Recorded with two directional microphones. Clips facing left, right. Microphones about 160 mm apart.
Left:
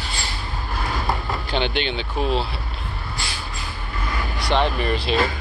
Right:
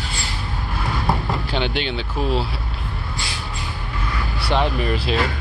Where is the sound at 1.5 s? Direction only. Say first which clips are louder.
Left 2 dB; 5° right (ahead or behind).